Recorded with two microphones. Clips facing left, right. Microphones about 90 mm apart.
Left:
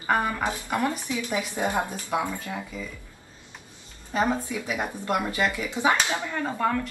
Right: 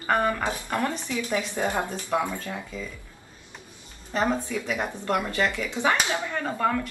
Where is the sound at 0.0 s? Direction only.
5° left (ahead or behind).